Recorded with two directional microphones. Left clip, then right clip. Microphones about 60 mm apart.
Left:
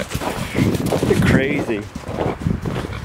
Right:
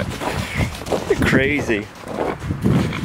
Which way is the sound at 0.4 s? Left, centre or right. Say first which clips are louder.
Left 4 dB; centre.